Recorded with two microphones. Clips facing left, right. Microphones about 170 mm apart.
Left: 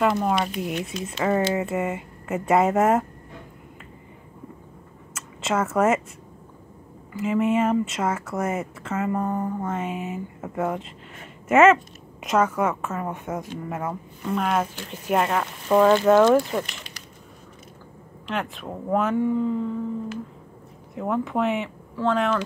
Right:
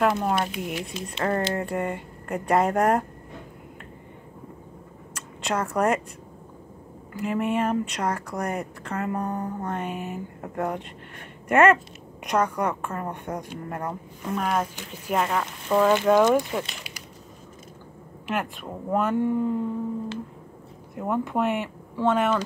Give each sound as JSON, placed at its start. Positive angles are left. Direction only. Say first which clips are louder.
{"t": 0.0, "sound": "speech", "louder": "left 1 dB", "side_deg": 0}
{"t": 5.1, "sound": "a sound", "louder": "left 3 dB", "side_deg": 5}
{"t": 7.2, "sound": "speech", "louder": "left 3 dB", "side_deg": 0}
{"t": 16.1, "sound": "speech", "louder": "left 2 dB", "side_deg": -15}
{"t": 18.2, "sound": "speech", "louder": "even", "side_deg": 0}
{"t": 19.3, "sound": "speech", "louder": "left 1 dB", "side_deg": -10}
{"t": 20.9, "sound": "speech", "louder": "left 1 dB", "side_deg": 0}